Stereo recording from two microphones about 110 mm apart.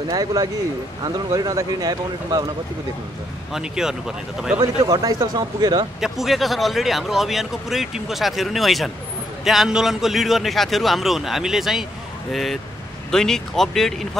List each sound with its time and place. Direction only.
0.1 s speech: 35° right (ahead or behind)
3.5 s a man's voice: 5° right (ahead or behind)
4.6 s speech: 35° right (ahead or behind)
5.9 s a man's voice: 5° right (ahead or behind)